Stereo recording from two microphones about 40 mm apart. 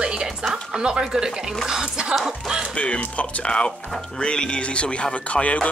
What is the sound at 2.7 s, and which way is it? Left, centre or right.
Speech, left.